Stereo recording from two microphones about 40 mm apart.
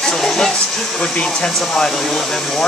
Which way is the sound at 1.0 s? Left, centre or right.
Centre.